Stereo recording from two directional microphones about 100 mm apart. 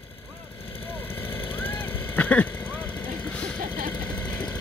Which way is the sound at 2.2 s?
15° left (ahead or behind).